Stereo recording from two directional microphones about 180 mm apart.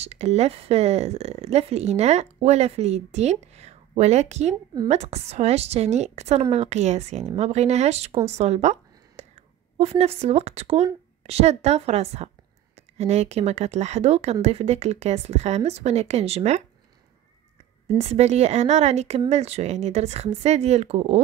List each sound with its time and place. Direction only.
0.0 s a woman's voice: 35° right (ahead or behind)
8.3 s a sound: 35° right (ahead or behind)
9.8 s a woman's voice: 35° right (ahead or behind)
17.9 s a woman's voice: 35° right (ahead or behind)